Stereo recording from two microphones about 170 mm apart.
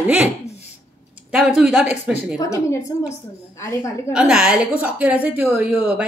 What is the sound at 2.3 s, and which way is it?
A woman's voice, 20° left (ahead or behind).